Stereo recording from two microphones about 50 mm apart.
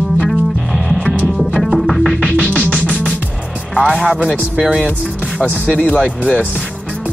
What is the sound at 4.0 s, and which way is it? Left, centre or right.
Music, right.